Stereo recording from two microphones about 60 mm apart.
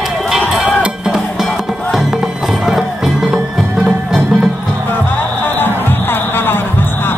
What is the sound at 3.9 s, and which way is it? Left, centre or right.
Music, right.